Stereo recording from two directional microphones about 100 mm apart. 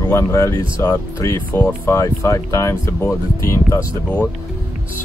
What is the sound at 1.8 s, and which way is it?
Speech, 30° left (ahead or behind).